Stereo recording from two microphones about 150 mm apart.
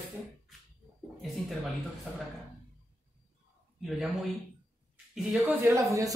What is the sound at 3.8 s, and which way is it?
Speech, centre (ahead or behind).